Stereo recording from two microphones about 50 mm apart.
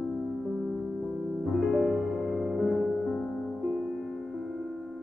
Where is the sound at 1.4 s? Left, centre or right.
Centre.